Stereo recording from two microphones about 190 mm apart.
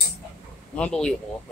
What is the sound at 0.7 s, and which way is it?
Speech, 5° left (ahead or behind).